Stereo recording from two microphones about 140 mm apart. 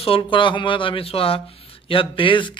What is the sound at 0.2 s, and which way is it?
A man's voice, 35° left (ahead or behind).